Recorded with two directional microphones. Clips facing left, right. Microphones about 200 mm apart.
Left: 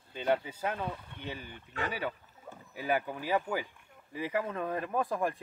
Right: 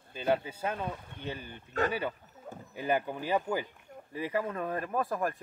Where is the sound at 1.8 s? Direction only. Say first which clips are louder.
Right 6 dB; 40° right (ahead or behind).